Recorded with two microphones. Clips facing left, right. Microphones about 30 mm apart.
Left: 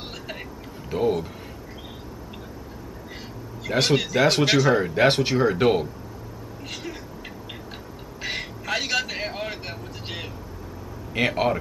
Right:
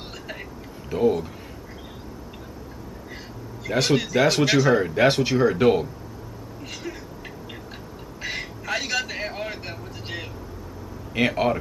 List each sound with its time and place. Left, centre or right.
0.1 s a sound: centre
3.6 s speech: centre
5.0 s speech: centre
6.6 s a sound: centre
8.2 s vehicle: centre
11.1 s speech: centre